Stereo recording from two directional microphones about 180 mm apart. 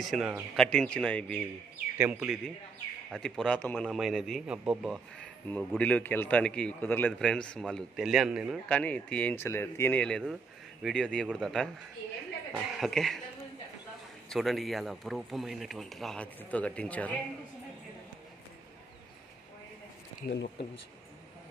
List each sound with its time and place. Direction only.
0.0 s a man's voice: centre (ahead or behind)
2.0 s speech: 10° right (ahead or behind)
3.1 s a man's voice: centre (ahead or behind)
8.6 s a man's voice: 5° left (ahead or behind)
12.7 s a man's voice: centre (ahead or behind)
14.3 s a man's voice: centre (ahead or behind)
20.2 s speech: 55° left (ahead or behind)